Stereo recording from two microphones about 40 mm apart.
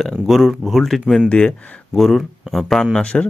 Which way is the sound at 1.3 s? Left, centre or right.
Left.